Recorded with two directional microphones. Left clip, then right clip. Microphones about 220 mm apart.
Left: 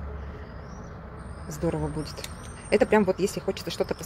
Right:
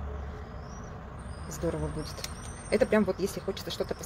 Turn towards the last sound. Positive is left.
turn(degrees=30)  # may be behind; listen again after turning